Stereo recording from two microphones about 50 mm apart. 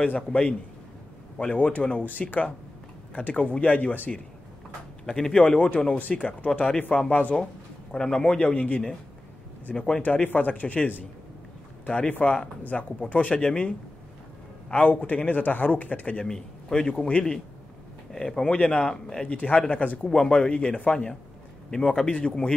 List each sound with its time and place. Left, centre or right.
0.0 s a man's voice: left
5.0 s a man's voice: centre
7.9 s a man's voice: centre
8.4 s a man's voice: left
9.8 s a man's voice: centre
10.0 s a man's voice: left
12.1 s a man's voice: left
14.7 s a man's voice: left
16.3 s a man's voice: centre
18.1 s a man's voice: centre
19.2 s a man's voice: left
20.1 s a man's voice: centre